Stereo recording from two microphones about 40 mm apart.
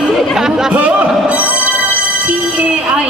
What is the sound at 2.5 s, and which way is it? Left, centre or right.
Speech, right.